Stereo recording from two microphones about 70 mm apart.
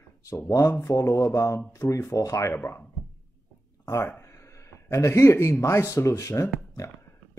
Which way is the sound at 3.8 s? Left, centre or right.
Left.